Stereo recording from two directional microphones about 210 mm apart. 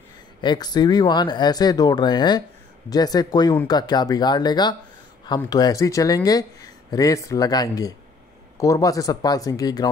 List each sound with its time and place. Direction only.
0.4 s speech: 20° left (ahead or behind)